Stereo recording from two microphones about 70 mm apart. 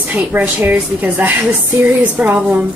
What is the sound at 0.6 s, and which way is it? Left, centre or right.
Music, right.